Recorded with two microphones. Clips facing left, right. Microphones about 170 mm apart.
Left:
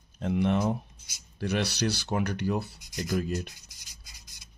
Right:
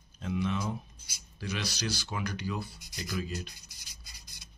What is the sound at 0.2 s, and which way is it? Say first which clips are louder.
Speech: left 6 dB; 60° left (ahead or behind).